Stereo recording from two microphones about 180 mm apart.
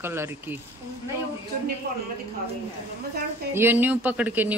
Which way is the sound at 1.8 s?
60° right (ahead or behind).